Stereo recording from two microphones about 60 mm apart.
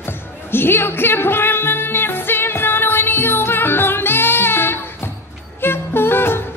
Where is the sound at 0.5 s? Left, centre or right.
Left.